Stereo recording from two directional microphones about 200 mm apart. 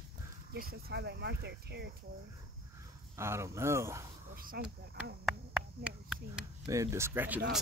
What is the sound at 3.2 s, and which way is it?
Speech, 15° right (ahead or behind).